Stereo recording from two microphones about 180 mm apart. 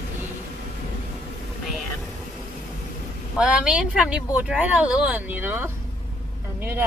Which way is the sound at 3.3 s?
5° right (ahead or behind).